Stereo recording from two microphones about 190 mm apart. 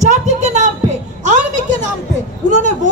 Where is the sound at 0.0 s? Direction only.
35° right (ahead or behind).